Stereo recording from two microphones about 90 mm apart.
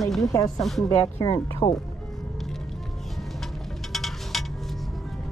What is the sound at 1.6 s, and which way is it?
Speech, 90° left.